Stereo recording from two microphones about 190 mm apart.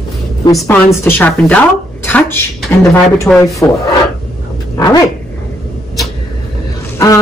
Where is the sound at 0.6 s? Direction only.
10° left (ahead or behind).